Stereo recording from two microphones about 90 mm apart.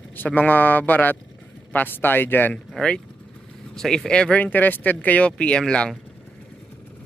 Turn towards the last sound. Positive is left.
turn(degrees=10)  # may be behind; listen again after turning